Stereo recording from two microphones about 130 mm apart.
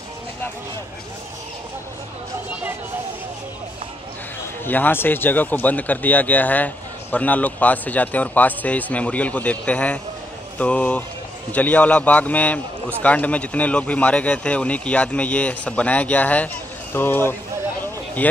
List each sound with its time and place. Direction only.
4.6 s speech: 15° left (ahead or behind)